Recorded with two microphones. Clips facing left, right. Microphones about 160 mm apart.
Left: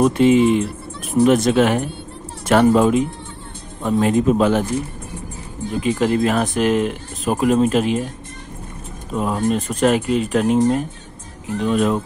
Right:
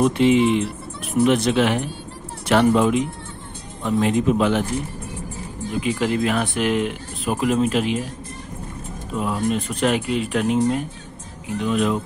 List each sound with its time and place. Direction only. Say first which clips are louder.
0.0 s speech: left 3 dB; 45° left (ahead or behind)
5.8 s speech: left 4 dB; 40° left (ahead or behind)
9.1 s speech: left 3 dB; 40° left (ahead or behind)